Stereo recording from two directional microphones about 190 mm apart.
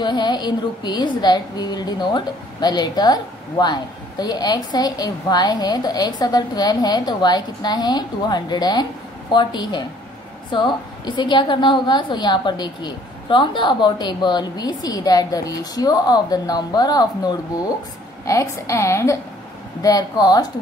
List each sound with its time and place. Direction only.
0.0 s a woman's voice: 25° left (ahead or behind)